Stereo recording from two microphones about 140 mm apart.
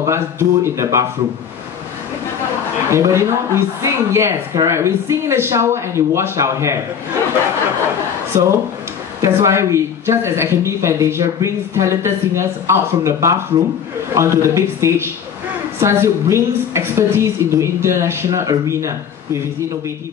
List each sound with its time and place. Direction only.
0.0 s speech: 20° right (ahead or behind)
2.9 s speech: 20° right (ahead or behind)
8.3 s speech: 20° right (ahead or behind)